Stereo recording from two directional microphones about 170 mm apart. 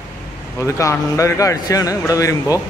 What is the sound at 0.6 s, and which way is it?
Speech, 15° left (ahead or behind).